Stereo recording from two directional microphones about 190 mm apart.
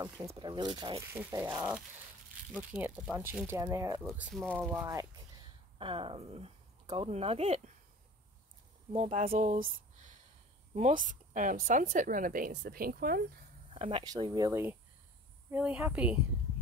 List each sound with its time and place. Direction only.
0.3 s speech: 25° right (ahead or behind)
4.1 s speech: centre (ahead or behind)
4.8 s speech: 20° right (ahead or behind)
8.9 s speech: 30° right (ahead or behind); by 13.2 s 50° right (ahead or behind)
13.7 s speech: 30° right (ahead or behind); by 16.2 s 5° right (ahead or behind)